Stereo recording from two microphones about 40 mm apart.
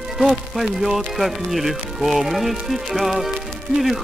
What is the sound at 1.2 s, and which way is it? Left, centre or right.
Speech, centre.